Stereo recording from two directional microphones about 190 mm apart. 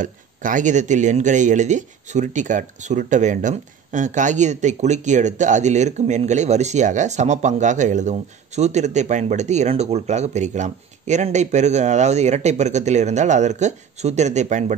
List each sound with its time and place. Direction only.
0.0 s speech: 45° right (ahead or behind)